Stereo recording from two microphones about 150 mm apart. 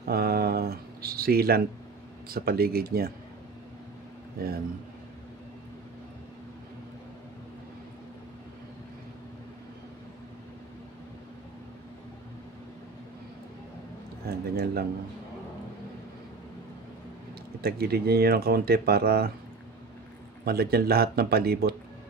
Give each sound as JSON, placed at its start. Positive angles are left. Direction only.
{"t": 0.0, "sound": "a sound", "side_deg": -90}
{"t": 2.2, "sound": "speech", "side_deg": -90}
{"t": 14.2, "sound": "speech", "side_deg": -90}
{"t": 17.6, "sound": "speech", "side_deg": -90}
{"t": 20.4, "sound": "speech", "side_deg": -90}